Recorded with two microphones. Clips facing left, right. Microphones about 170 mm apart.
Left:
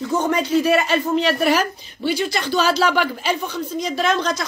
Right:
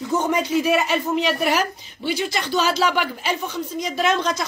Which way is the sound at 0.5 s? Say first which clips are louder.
Left 4 dB; 15° right (ahead or behind).